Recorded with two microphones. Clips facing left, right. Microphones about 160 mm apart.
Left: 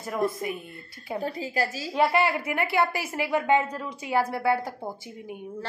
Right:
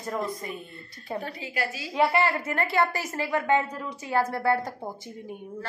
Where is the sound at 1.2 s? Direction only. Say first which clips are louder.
Left 4 dB; 35° left (ahead or behind).